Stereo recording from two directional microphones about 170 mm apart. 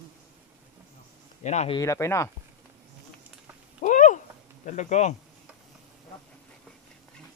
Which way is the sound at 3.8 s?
50° left (ahead or behind).